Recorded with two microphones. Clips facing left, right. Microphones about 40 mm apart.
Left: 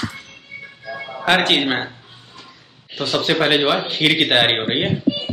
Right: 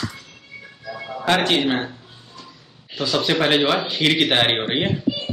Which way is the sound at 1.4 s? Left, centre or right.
Left.